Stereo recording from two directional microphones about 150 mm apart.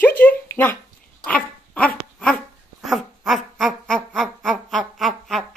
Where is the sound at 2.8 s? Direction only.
Centre (ahead or behind).